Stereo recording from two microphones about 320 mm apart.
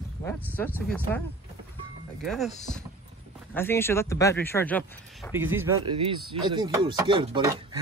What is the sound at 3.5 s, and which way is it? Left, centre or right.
Speech, centre.